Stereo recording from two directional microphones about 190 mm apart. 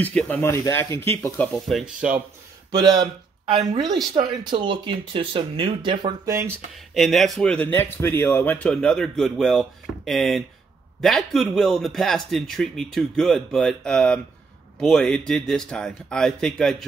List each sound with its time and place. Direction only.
0.0 s speech: 5° left (ahead or behind)
1.5 s speech: centre (ahead or behind)
2.7 s speech: 20° right (ahead or behind)
6.9 s speech: centre (ahead or behind)